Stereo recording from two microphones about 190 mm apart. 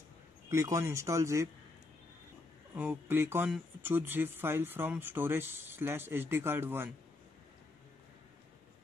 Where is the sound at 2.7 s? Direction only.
5° right (ahead or behind).